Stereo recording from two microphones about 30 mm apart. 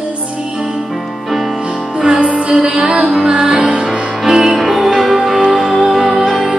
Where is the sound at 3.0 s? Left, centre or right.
Centre.